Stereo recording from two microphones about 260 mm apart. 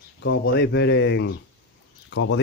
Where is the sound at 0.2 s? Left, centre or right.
Left.